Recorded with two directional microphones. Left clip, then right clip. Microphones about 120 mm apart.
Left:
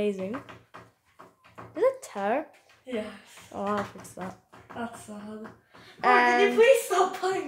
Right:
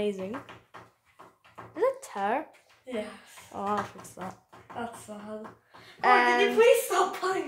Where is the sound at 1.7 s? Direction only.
5° right (ahead or behind).